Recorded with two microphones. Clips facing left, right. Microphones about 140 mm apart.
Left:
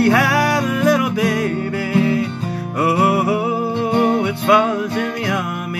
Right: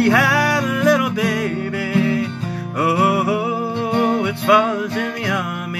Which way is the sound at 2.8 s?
Centre (ahead or behind).